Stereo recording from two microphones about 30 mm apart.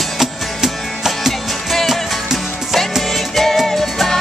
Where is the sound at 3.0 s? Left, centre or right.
Centre.